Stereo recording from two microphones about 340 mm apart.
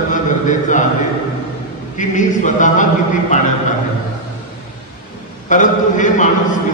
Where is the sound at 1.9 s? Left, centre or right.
Left.